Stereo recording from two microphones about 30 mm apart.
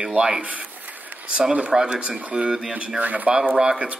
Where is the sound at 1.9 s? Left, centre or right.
Right.